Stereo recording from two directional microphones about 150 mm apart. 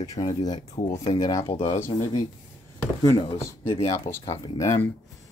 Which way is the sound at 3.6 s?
40° left (ahead or behind).